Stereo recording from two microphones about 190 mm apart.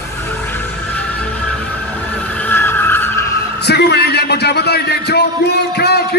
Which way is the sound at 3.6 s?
60° left (ahead or behind).